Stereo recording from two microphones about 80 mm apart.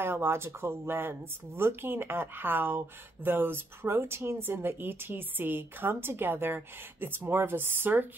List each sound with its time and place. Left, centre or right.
0.0 s speech: right